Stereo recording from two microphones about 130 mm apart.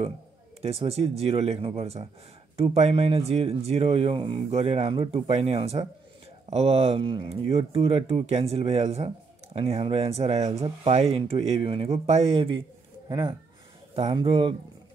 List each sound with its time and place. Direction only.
0.6 s speech: 50° right (ahead or behind)
4.5 s speech: 50° right (ahead or behind)
7.2 s speech: 50° right (ahead or behind)
14.1 s speech: 40° right (ahead or behind)